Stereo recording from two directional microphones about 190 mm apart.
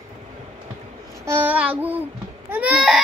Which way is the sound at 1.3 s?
10° right (ahead or behind).